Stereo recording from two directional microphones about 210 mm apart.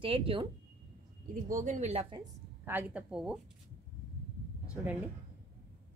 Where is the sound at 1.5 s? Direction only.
35° right (ahead or behind).